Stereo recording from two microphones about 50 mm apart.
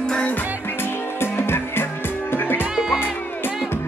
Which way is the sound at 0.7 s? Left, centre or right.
Left.